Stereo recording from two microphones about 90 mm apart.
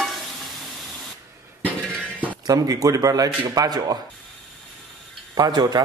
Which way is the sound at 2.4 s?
40° right (ahead or behind).